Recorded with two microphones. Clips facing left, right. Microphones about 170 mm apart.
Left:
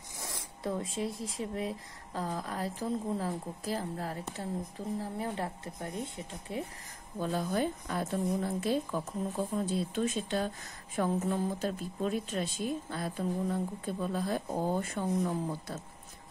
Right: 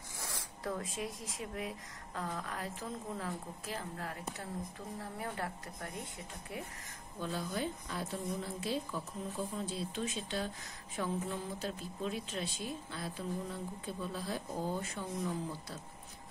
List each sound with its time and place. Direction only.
0.2 s speech: 25° left (ahead or behind)
7.2 s a woman's voice: 45° left (ahead or behind)